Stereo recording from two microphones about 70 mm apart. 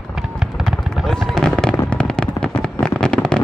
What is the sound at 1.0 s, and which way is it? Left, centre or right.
Fireworks, centre.